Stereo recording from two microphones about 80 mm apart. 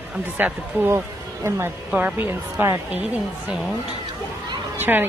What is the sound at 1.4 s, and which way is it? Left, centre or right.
Speech, right.